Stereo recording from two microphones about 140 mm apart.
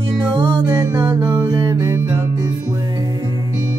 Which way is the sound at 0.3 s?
35° right (ahead or behind).